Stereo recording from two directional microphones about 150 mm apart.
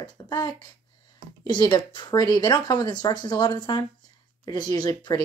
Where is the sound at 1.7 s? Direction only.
30° left (ahead or behind).